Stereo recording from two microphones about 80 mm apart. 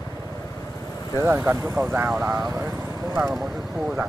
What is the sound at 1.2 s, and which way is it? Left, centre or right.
Speech, right.